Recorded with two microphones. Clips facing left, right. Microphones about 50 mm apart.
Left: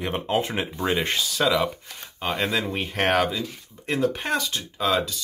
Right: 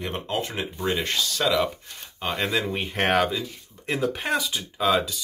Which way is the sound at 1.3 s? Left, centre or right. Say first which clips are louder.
Left 1 dB; centre.